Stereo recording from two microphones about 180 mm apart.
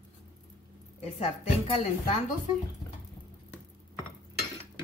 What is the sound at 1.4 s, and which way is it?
Speech, 40° left (ahead or behind).